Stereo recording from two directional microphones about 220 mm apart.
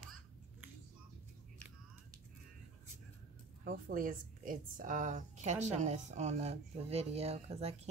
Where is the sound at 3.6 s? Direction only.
40° right (ahead or behind).